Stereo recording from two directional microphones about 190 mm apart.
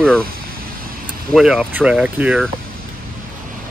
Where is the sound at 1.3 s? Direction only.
5° right (ahead or behind).